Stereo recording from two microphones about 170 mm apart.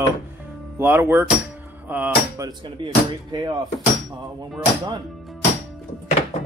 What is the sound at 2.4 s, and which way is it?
Speech, 25° right (ahead or behind).